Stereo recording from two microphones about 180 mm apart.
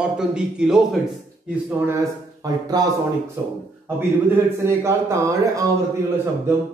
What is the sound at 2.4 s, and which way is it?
Speech, 20° right (ahead or behind).